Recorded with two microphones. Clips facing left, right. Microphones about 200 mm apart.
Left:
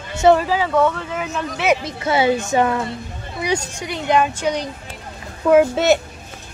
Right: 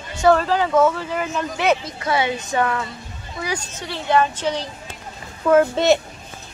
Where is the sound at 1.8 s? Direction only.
25° left (ahead or behind).